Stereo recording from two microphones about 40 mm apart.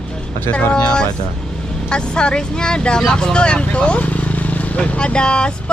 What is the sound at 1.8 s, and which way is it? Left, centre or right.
Speech, left.